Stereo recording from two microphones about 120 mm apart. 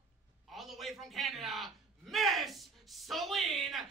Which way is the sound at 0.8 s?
Centre (ahead or behind).